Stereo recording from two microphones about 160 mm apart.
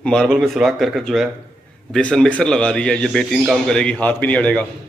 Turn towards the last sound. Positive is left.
turn(degrees=10)  # may be behind; listen again after turning